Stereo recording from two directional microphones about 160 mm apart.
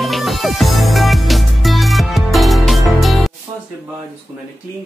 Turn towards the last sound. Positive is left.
turn(degrees=0)  # may be behind; listen again after turning